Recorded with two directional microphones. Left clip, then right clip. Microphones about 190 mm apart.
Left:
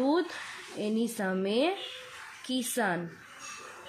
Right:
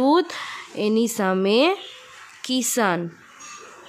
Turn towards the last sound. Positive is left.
turn(degrees=-45)  # may be behind; listen again after turning